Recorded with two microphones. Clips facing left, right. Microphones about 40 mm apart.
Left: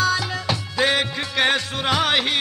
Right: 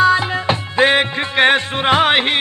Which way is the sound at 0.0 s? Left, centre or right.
Right.